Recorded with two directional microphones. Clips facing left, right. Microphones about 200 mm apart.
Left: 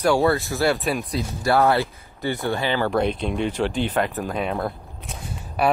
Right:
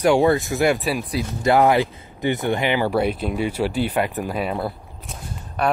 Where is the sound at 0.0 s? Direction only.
15° right (ahead or behind).